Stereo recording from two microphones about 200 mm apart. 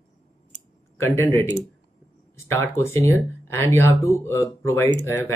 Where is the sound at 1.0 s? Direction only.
10° left (ahead or behind).